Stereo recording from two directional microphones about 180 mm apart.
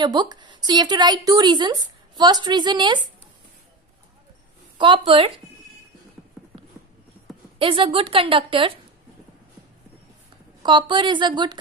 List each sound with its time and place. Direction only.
0.0 s speech: 25° right (ahead or behind)
4.7 s speech: 25° right (ahead or behind)
7.5 s speech: 30° right (ahead or behind)
10.6 s speech: 25° right (ahead or behind)